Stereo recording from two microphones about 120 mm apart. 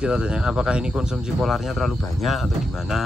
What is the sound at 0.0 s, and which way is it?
Speech, 10° right (ahead or behind).